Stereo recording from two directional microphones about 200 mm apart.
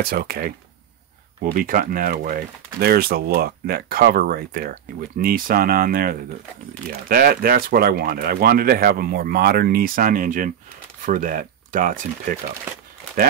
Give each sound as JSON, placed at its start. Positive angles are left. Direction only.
{"t": 0.0, "sound": "speech", "side_deg": -50}